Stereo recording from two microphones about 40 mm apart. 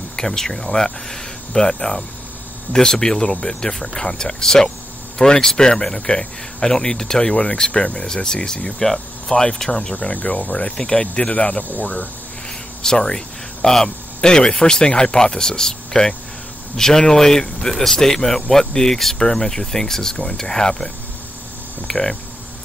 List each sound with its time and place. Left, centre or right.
0.1 s speech: centre
8.0 s speech: centre
9.9 s speech: left
10.8 s speech: left
12.8 s speech: centre